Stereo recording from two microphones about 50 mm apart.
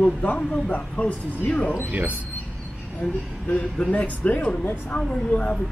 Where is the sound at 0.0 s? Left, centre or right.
Left.